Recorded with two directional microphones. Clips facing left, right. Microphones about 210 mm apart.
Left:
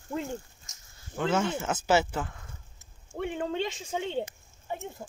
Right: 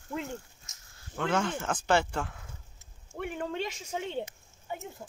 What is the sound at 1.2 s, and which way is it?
Speech, 5° left (ahead or behind).